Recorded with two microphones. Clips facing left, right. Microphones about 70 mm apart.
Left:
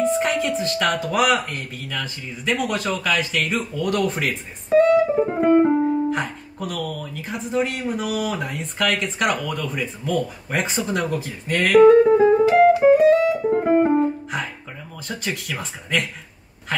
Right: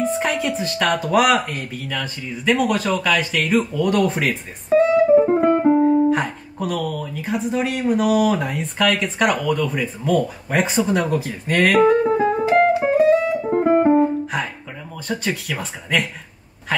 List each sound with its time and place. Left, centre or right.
0.0 s speech: centre
5.0 s music: centre
5.4 s speech: centre
11.6 s music: centre
15.0 s speech: centre